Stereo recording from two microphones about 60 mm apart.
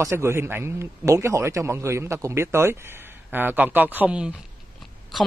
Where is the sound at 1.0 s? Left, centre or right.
Right.